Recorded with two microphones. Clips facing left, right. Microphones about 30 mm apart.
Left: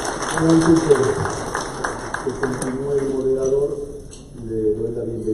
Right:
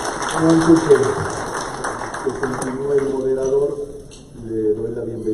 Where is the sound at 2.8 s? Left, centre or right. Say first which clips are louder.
Right 2 dB; right.